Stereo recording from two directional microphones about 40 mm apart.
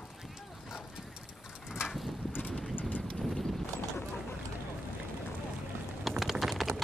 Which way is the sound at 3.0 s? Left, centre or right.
Centre.